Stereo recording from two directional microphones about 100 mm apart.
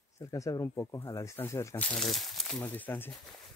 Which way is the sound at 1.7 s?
15° left (ahead or behind).